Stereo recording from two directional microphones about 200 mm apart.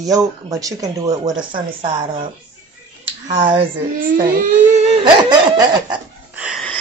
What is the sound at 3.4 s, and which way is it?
Speech, 25° right (ahead or behind).